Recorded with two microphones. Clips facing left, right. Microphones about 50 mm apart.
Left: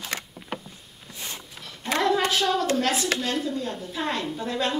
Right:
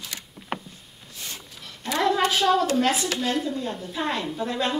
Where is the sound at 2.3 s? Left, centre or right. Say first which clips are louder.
Right 2 dB; centre.